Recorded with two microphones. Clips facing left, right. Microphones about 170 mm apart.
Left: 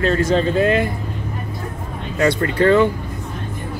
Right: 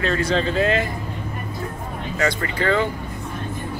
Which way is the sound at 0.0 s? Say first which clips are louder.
Left 4 dB; 45° left (ahead or behind).